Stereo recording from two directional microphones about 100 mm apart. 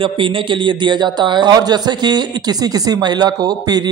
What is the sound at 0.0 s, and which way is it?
A man's voice, 55° right (ahead or behind).